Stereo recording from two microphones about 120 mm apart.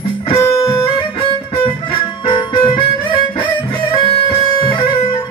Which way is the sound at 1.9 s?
45° left (ahead or behind).